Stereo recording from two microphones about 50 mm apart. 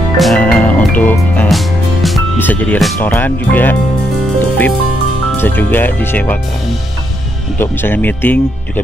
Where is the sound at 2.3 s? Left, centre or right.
Left.